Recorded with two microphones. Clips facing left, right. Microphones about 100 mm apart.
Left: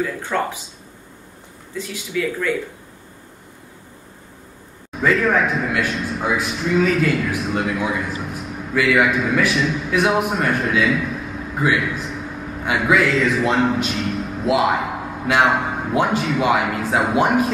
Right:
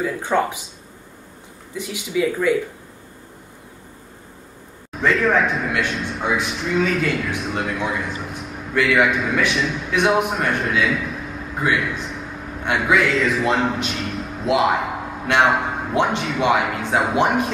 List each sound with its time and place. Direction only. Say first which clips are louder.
0.0 s speech: right 2 dB; 15° right (ahead or behind)
1.7 s speech: right 1 dB; 15° right (ahead or behind)
4.9 s a man's voice: even; centre (ahead or behind)